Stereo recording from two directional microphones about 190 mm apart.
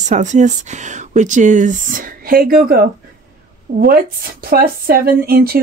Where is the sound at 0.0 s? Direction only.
40° right (ahead or behind).